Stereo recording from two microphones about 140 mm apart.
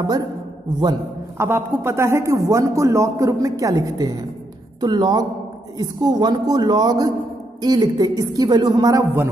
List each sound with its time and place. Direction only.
0.0 s a man's voice: 30° right (ahead or behind)
1.4 s a man's voice: 20° right (ahead or behind)